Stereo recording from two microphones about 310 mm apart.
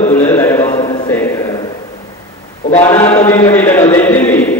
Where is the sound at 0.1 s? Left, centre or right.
Centre.